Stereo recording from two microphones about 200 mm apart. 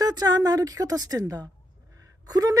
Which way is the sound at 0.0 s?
20° right (ahead or behind).